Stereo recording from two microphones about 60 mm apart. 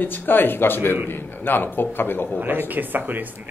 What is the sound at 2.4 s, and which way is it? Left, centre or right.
Speech, right.